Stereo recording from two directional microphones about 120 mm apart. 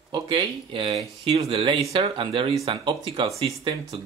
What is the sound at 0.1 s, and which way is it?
Speech, 35° right (ahead or behind).